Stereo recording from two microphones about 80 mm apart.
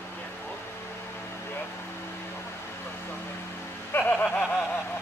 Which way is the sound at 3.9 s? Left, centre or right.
Centre.